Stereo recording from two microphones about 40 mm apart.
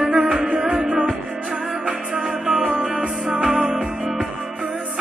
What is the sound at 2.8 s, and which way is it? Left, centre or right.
Music, centre.